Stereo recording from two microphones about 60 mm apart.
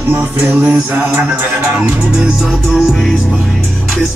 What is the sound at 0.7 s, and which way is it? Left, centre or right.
Mantra, right.